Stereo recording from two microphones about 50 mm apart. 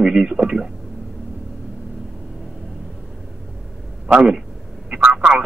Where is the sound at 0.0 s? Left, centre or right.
Centre.